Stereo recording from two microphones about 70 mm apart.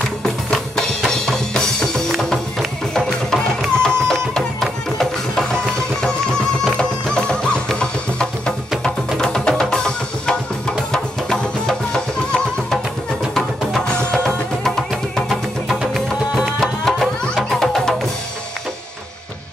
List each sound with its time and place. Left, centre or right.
0.2 s drum: centre
4.1 s music: centre
15.8 s music: centre